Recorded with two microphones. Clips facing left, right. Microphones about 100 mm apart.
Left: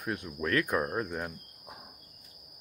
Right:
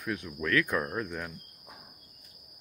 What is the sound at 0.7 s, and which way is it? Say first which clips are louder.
Speech: left 1 dB; 35° left (ahead or behind).